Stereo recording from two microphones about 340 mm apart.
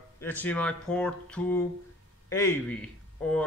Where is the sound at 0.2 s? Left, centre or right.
Centre.